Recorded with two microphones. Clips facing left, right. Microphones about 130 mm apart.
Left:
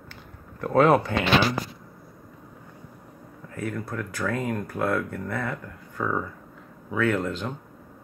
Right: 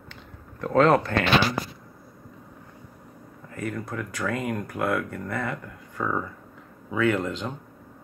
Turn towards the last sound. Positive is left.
turn(degrees=0)  # may be behind; listen again after turning